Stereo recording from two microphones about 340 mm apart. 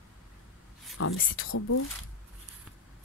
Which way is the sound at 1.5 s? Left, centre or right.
Left.